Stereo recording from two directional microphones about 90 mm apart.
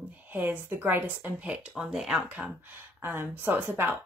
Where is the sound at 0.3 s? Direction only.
20° right (ahead or behind).